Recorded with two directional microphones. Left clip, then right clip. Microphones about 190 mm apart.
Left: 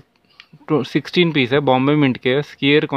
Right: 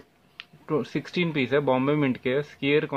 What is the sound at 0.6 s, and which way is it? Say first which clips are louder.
Speech: left 9 dB; 50° left (ahead or behind).